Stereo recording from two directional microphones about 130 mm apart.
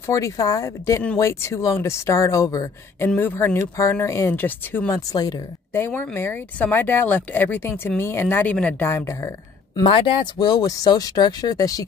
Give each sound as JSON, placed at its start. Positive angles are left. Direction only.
{"t": 0.0, "sound": "speech", "side_deg": 25}
{"t": 3.2, "sound": "speech", "side_deg": 15}
{"t": 4.9, "sound": "speech", "side_deg": 30}
{"t": 5.7, "sound": "speech", "side_deg": 15}
{"t": 9.8, "sound": "speech", "side_deg": 40}